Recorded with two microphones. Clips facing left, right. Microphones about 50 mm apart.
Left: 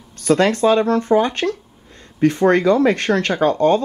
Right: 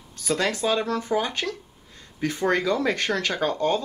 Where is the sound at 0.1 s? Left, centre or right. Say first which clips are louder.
Left 9 dB; left.